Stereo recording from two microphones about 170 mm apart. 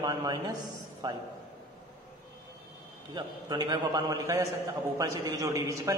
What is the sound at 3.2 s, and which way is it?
A man's voice, 25° right (ahead or behind).